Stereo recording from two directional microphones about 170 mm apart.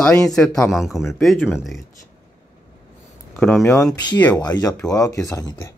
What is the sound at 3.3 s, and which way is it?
Speech, 10° left (ahead or behind).